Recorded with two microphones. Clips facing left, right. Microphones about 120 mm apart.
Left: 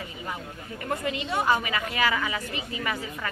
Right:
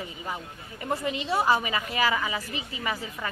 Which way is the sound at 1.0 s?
30° right (ahead or behind).